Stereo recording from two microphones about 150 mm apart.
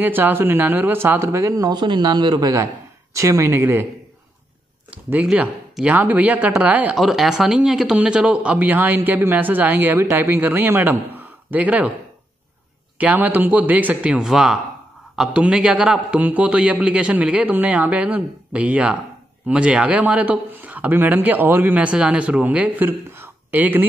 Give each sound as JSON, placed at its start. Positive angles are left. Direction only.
{"t": 0.0, "sound": "speech", "side_deg": -15}
{"t": 4.9, "sound": "speech", "side_deg": -10}
{"t": 12.9, "sound": "speech", "side_deg": -10}